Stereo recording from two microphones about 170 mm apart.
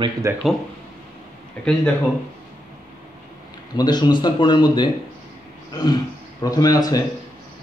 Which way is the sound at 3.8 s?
25° left (ahead or behind).